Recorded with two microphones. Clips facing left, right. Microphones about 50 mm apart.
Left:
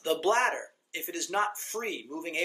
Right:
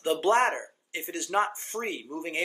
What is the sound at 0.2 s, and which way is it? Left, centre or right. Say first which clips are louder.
Speech: right 4 dB; right.